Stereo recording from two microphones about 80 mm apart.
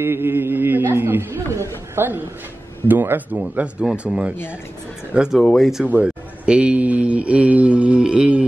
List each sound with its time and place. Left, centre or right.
0.0 s a man's voice: right
2.9 s a man's voice: right; by 5.9 s centre
5.9 s mantra: centre